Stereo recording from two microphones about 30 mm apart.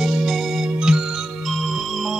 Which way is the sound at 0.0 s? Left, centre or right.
Centre.